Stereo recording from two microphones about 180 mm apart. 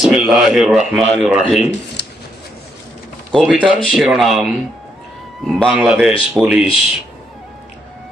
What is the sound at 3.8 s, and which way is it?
Speech, centre (ahead or behind).